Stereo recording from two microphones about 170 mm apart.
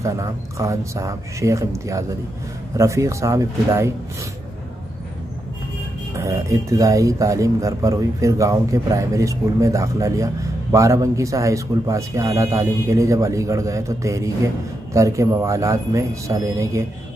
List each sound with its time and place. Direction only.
0.0 s speech: 20° right (ahead or behind)
6.1 s speech: 20° right (ahead or behind)